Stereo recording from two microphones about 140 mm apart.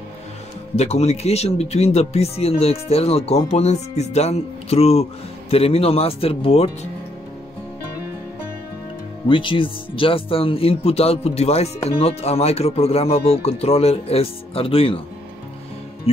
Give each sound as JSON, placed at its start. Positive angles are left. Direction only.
{"t": 0.7, "sound": "speech", "side_deg": 50}
{"t": 9.3, "sound": "speech", "side_deg": 35}